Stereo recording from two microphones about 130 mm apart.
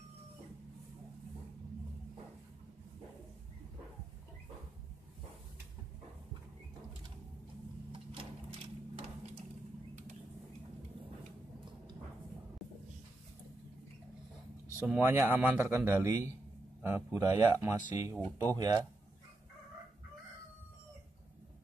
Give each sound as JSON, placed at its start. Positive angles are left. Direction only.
{"t": 7.9, "sound": "sewing machine", "side_deg": -45}
{"t": 14.8, "sound": "a man's voice", "side_deg": -15}